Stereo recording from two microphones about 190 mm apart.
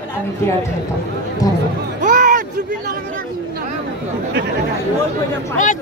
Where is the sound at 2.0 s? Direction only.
45° right (ahead or behind).